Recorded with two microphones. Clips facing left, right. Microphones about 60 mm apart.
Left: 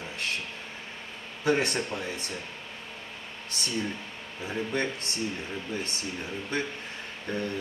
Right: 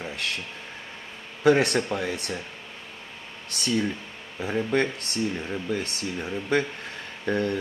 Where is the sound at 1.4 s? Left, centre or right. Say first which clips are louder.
Right 6 dB; right.